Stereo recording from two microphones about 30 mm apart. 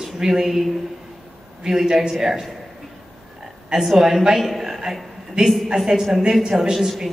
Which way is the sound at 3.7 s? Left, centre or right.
Right.